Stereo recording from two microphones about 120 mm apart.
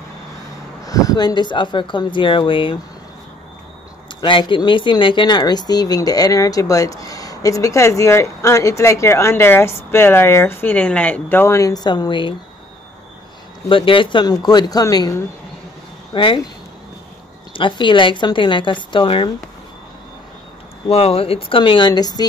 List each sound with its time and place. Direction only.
0.8 s speech: 30° left (ahead or behind); by 2.8 s 45° left (ahead or behind)
4.1 s speech: 40° left (ahead or behind)
13.7 s speech: 45° left (ahead or behind); by 15.2 s 30° left (ahead or behind)
16.1 s speech: 45° left (ahead or behind)
17.5 s speech: 45° left (ahead or behind)
20.9 s speech: 55° left (ahead or behind); by 22.2 s 35° left (ahead or behind)